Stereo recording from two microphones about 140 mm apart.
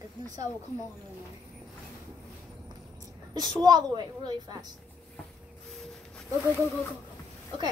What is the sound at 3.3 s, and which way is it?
A woman's voice, 30° right (ahead or behind).